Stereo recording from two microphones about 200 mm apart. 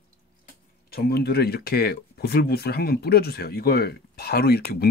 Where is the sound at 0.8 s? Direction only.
50° left (ahead or behind).